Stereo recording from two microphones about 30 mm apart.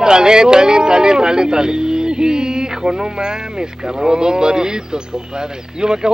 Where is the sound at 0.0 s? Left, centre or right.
Right.